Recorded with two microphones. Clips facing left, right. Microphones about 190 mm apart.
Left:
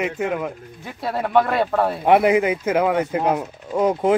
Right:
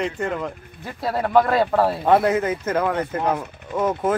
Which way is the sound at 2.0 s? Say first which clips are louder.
Left 5 dB; 15° left (ahead or behind).